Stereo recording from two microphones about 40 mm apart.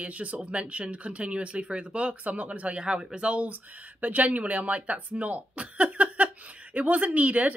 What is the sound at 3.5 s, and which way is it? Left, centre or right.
Speech, right.